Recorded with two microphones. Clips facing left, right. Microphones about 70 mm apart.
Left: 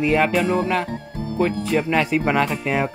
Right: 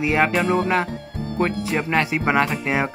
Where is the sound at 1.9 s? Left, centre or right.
Centre.